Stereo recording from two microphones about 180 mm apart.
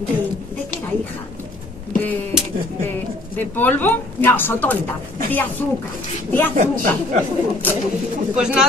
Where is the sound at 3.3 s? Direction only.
10° left (ahead or behind).